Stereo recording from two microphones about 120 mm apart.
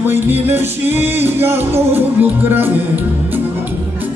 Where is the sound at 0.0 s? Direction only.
15° right (ahead or behind).